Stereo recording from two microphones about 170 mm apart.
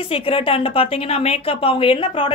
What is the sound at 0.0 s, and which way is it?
A woman's voice, 35° left (ahead or behind).